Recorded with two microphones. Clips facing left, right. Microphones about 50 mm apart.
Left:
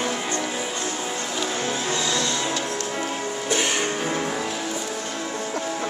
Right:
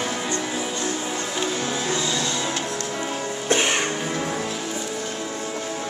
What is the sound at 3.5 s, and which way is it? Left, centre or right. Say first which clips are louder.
Music: right 3 dB; right.